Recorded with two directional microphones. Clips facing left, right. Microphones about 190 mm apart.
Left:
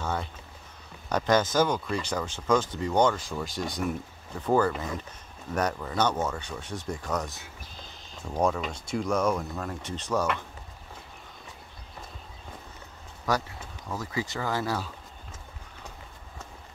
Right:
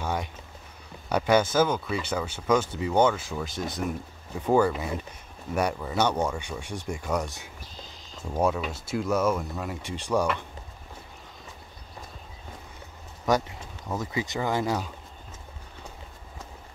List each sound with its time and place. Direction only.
0.0 s a sound: 15° right (ahead or behind)
1.0 s speech: 10° right (ahead or behind)
13.3 s speech: 20° right (ahead or behind)